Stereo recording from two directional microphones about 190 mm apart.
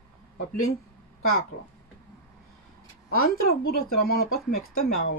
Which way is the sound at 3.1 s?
50° left (ahead or behind).